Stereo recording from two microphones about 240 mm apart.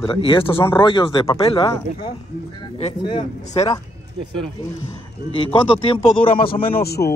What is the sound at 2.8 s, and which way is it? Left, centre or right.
Speech, left.